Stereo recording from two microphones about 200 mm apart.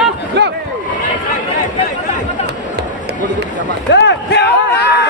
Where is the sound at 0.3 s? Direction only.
60° right (ahead or behind).